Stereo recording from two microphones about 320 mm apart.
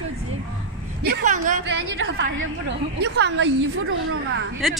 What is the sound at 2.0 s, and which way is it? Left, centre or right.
A woman's voice, right.